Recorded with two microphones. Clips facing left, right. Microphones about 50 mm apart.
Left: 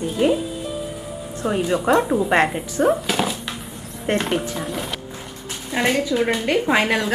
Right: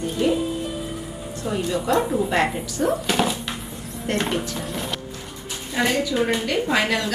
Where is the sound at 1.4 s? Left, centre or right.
Left.